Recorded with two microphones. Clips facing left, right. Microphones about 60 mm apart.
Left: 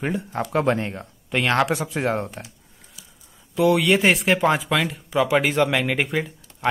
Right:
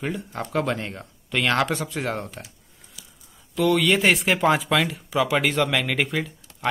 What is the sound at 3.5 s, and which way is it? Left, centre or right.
Speech, centre.